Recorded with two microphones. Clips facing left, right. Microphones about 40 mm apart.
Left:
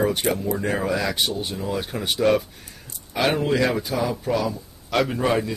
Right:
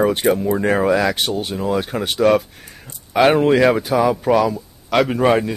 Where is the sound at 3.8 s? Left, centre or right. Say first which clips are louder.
Right 8 dB; right.